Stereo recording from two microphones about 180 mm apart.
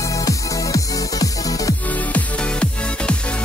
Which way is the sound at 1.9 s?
5° left (ahead or behind).